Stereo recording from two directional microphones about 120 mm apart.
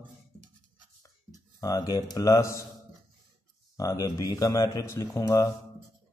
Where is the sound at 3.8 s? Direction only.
30° left (ahead or behind).